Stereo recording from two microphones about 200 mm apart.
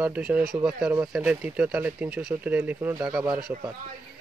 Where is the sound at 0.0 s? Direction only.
5° right (ahead or behind).